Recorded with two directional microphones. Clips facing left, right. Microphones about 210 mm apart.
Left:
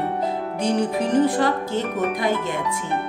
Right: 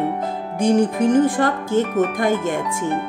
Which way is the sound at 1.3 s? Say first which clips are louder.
Right 2 dB; 50° right (ahead or behind).